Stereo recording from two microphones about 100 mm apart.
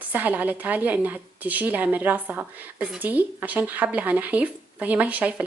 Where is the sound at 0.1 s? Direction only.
15° right (ahead or behind).